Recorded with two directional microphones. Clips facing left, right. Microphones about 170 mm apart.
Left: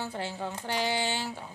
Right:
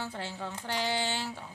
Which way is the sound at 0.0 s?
10° left (ahead or behind).